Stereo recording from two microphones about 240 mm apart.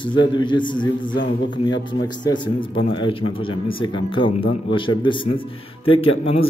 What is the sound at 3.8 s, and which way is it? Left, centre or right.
A man's voice, left.